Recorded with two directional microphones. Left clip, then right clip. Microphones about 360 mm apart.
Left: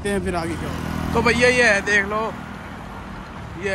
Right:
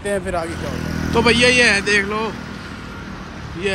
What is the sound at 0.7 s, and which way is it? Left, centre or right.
Speech, left.